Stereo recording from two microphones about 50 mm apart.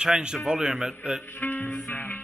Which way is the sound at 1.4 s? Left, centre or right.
Left.